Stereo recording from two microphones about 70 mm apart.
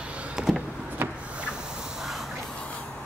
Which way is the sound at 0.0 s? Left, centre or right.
Centre.